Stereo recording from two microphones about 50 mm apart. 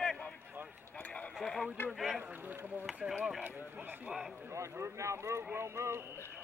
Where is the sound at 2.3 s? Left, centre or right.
Right.